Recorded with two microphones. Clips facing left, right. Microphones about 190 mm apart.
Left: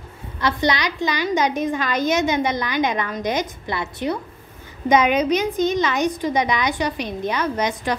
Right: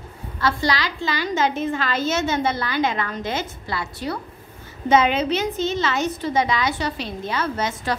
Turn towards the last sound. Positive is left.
turn(degrees=15)  # may be behind; listen again after turning